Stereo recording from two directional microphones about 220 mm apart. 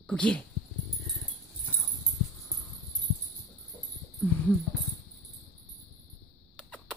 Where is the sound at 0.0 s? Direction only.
5° left (ahead or behind).